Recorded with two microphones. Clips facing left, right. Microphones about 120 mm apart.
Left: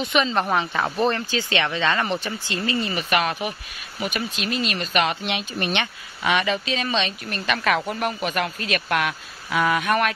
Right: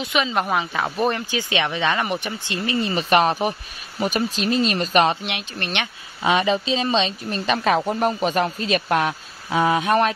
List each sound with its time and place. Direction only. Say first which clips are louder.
0.0 s speech: left 1 dB; 5° right (ahead or behind)
1.1 s speech: even; 15° right (ahead or behind)
2.9 s speech: right 5 dB; 35° right (ahead or behind)
5.2 s speech: left 3 dB; centre (ahead or behind)
6.2 s a woman's voice: right 3 dB; 30° right (ahead or behind)